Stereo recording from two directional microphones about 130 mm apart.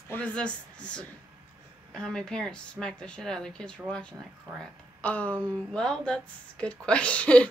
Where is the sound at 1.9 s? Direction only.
5° left (ahead or behind).